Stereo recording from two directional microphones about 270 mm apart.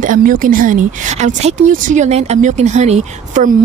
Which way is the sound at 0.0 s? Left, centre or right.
Right.